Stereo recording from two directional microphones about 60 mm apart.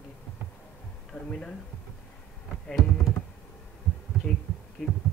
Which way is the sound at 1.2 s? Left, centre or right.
Centre.